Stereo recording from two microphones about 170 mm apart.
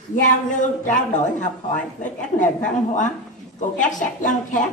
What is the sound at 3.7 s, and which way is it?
Speech, 50° left (ahead or behind).